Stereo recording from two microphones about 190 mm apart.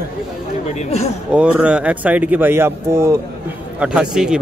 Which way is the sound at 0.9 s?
35° left (ahead or behind).